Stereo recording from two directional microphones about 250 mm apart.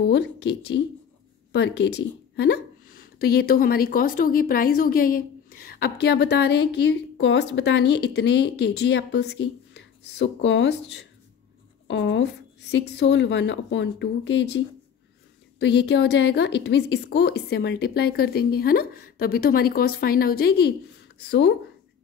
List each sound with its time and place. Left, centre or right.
1.5 s speech: left
15.6 s a woman's voice: left